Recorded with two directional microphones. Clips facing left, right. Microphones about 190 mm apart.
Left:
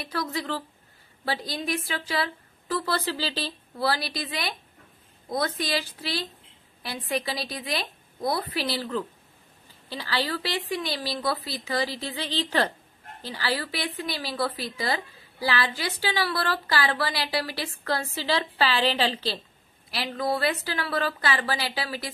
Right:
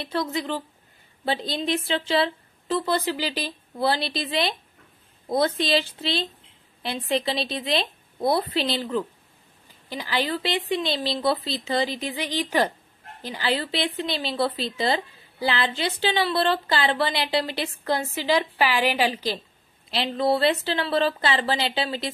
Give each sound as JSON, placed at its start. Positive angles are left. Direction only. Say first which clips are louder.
{"t": 0.0, "sound": "speech", "louder": "right 4 dB", "side_deg": -25}
{"t": 19.9, "sound": "speech", "louder": "right 5 dB", "side_deg": -25}